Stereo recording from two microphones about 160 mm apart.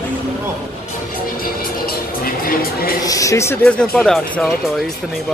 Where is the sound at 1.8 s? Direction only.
65° left (ahead or behind).